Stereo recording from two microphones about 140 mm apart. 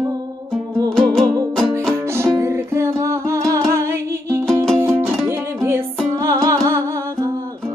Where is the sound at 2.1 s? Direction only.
20° right (ahead or behind).